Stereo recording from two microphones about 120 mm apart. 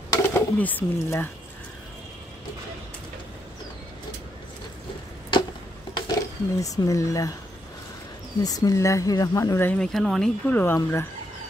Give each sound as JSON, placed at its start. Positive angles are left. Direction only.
{"t": 0.2, "sound": "speech", "side_deg": 15}
{"t": 5.9, "sound": "speech", "side_deg": 30}
{"t": 8.4, "sound": "speech", "side_deg": 30}
{"t": 9.8, "sound": "speech", "side_deg": 5}
{"t": 10.5, "sound": "speech", "side_deg": 15}